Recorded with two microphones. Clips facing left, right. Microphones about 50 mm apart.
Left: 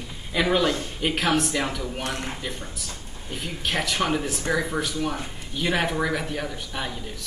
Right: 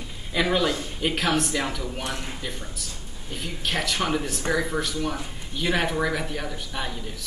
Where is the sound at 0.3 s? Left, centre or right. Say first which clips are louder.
Left 1 dB; centre.